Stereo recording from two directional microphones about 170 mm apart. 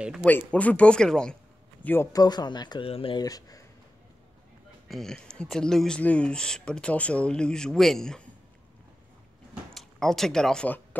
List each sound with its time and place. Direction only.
0.2 s a man's voice: 10° left (ahead or behind)
2.1 s speech: 25° left (ahead or behind)
4.8 s speech: centre (ahead or behind)
9.8 s speech: centre (ahead or behind)